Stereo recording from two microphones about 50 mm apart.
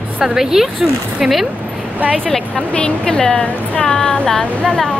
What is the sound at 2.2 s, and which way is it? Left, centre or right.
Speech, centre.